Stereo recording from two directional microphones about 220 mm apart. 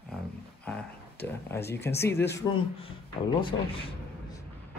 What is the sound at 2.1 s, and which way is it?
Speech, 50° left (ahead or behind).